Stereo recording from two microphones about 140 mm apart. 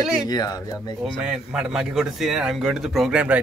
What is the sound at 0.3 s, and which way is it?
Speech, 30° left (ahead or behind).